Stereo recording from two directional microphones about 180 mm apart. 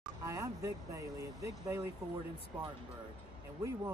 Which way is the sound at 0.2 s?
15° right (ahead or behind).